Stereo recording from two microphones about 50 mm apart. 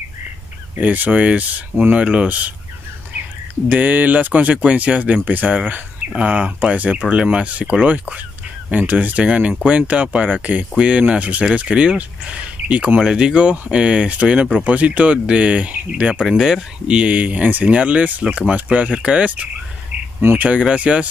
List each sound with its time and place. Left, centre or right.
0.7 s speech: right
3.6 s speech: right
13.0 s speech: centre
16.3 s speech: centre